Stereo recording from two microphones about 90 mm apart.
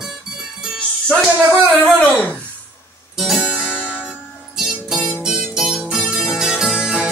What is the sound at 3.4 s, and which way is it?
Music, 15° right (ahead or behind).